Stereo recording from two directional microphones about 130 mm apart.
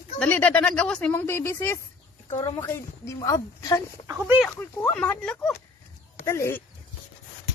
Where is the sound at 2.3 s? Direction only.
30° left (ahead or behind).